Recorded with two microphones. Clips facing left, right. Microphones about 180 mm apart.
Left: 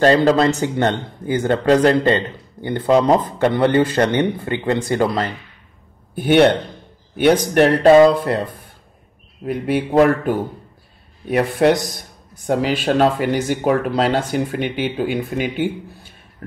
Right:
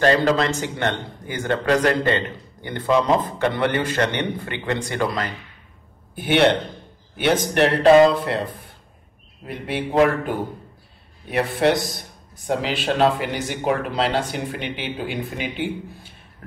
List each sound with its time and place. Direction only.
0.0 s a man's voice: 35° left (ahead or behind)
2.6 s a man's voice: 20° left (ahead or behind)
6.1 s speech: 45° left (ahead or behind)
9.5 s speech: 45° left (ahead or behind)